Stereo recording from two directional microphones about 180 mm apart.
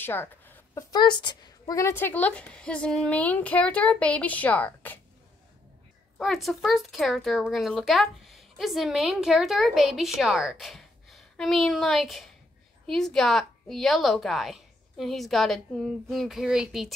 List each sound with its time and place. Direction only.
0.0 s a sound: 10° left (ahead or behind)
0.9 s a woman's voice: 25° left (ahead or behind)
6.1 s speech: centre (ahead or behind)